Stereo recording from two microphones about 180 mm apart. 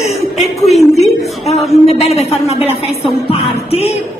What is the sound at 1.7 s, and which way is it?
A woman's voice, 35° left (ahead or behind).